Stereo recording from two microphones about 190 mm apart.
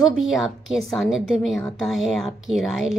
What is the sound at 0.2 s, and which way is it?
Speech, centre (ahead or behind).